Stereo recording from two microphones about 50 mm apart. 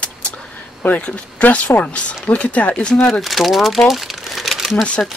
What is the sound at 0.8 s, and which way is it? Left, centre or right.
Speech, left.